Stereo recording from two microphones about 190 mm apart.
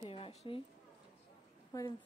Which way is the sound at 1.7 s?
15° left (ahead or behind).